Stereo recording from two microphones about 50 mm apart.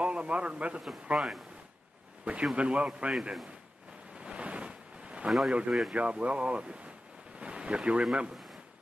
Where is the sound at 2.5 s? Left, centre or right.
Right.